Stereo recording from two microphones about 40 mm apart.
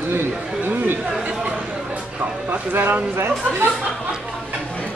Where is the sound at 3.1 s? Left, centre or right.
Right.